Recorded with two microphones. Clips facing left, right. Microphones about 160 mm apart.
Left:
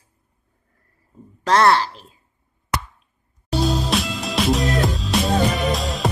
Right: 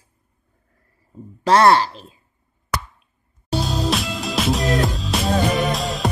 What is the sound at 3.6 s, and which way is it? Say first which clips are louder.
Music: left 2 dB; centre (ahead or behind).